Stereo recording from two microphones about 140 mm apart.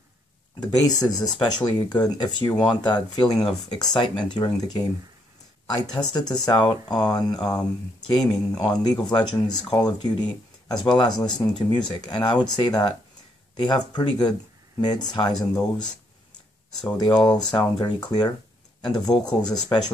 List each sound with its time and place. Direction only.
0.6 s speech: 30° left (ahead or behind)
16.9 s speech: 30° left (ahead or behind)